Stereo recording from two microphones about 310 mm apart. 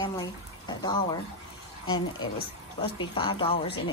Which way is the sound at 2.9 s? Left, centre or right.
Centre.